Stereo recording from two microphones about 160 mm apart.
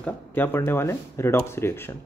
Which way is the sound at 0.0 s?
10° left (ahead or behind).